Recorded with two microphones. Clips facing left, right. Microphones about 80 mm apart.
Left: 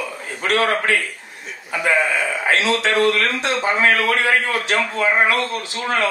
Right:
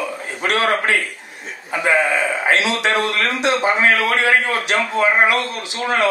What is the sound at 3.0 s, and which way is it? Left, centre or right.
A man's voice, centre.